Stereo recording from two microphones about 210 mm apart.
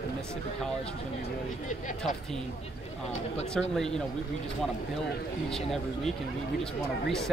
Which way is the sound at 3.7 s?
5° left (ahead or behind).